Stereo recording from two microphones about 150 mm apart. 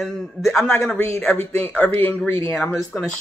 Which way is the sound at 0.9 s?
10° left (ahead or behind).